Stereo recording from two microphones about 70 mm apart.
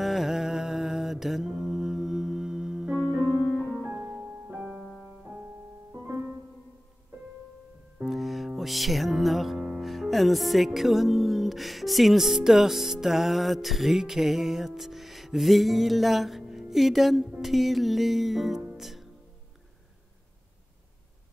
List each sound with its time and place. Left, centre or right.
0.0 s music: centre
3.2 s piano: right
3.8 s music: right
6.0 s music: right
8.0 s music: centre